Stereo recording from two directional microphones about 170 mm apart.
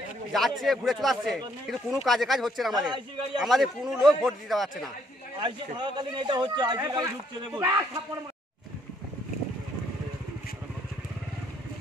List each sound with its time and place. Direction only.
0.3 s speech: centre (ahead or behind)
5.4 s a man's voice: 25° right (ahead or behind)